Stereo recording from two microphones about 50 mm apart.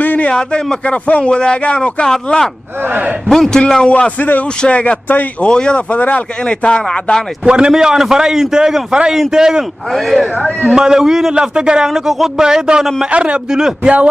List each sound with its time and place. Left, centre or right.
0.0 s a sound: left
0.3 s speech: centre
2.9 s a man's voice: right
3.3 s speech: centre
4.2 s speech: left
4.6 s speech: left
5.9 s speech: left
6.4 s speech: centre
7.4 s a man's voice: centre
7.7 s a man's voice: centre
9.9 s a man's voice: centre
10.7 s a man's voice: centre
13.5 s a man's voice: centre